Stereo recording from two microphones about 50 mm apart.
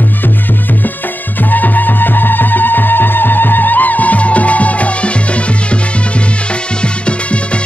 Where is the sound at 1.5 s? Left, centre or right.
Left.